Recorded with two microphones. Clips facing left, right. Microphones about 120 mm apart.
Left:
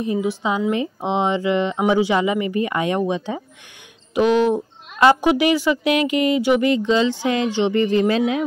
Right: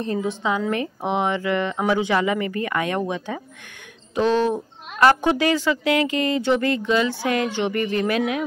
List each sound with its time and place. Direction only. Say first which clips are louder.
0.0 s a woman's voice: left 2 dB; 10° left (ahead or behind)